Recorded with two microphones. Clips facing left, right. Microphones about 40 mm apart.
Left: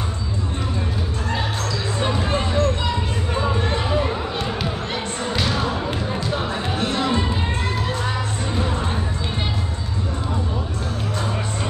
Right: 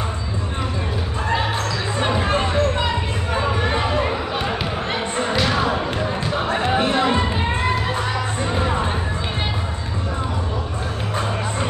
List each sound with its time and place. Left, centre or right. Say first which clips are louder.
2.0 s music: right 3 dB; right
3.6 s a sound: right 2 dB; right
6.5 s music: right 5 dB; right